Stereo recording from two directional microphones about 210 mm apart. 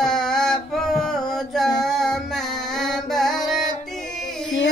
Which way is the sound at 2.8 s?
Centre (ahead or behind).